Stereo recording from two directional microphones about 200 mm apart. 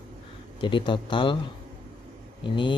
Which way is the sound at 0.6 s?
25° left (ahead or behind).